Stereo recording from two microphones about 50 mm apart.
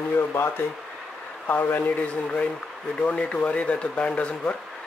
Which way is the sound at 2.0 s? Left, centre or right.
Left.